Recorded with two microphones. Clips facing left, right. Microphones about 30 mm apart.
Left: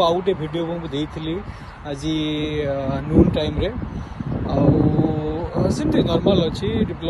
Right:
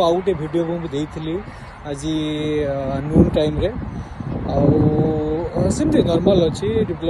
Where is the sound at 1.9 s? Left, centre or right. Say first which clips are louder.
Right 1 dB; left.